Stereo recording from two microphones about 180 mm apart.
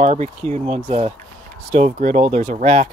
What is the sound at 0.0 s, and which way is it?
Speech, 35° right (ahead or behind).